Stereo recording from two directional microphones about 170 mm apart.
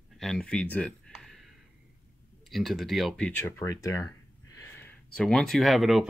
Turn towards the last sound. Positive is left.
turn(degrees=0)  # may be behind; listen again after turning